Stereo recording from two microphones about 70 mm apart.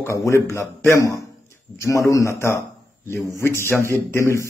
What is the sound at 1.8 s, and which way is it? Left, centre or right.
A man's voice, left.